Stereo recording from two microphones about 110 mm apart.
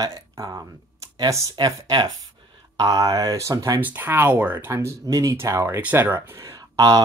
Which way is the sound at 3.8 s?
20° right (ahead or behind).